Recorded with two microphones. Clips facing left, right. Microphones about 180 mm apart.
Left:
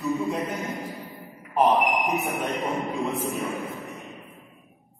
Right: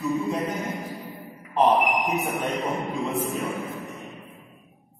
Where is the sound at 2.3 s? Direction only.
Centre (ahead or behind).